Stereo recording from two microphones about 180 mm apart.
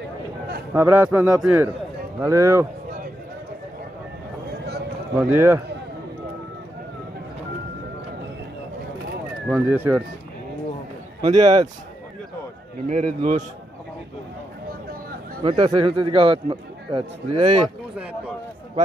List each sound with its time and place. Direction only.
0.7 s a man's voice: 10° right (ahead or behind)
5.3 s a man's voice: 15° right (ahead or behind)
9.7 s a man's voice: 10° right (ahead or behind)
11.3 s speech: 20° right (ahead or behind)
12.8 s speech: 40° right (ahead or behind)
15.4 s a man's voice: 30° right (ahead or behind)